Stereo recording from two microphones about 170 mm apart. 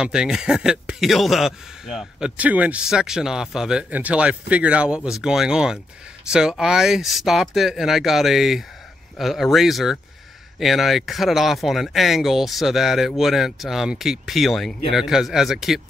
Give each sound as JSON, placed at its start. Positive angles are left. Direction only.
{"t": 0.0, "sound": "speech", "side_deg": -5}